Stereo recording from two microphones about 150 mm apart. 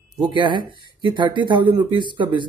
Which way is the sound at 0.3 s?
30° right (ahead or behind).